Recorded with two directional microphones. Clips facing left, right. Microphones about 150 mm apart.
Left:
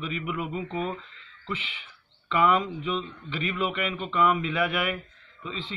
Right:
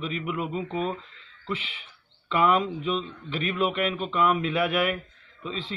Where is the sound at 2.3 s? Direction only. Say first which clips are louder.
Right 1 dB; 5° right (ahead or behind).